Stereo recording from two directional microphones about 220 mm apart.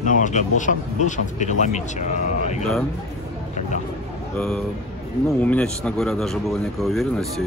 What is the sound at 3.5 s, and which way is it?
Vehicle, 35° left (ahead or behind).